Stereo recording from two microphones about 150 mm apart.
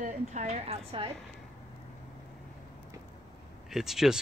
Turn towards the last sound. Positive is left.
turn(degrees=-5)  # may be behind; listen again after turning